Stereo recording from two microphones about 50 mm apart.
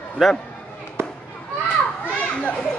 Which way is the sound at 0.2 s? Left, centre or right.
Centre.